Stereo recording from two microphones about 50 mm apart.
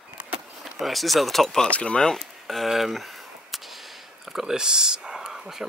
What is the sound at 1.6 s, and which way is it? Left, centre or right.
Speech, left.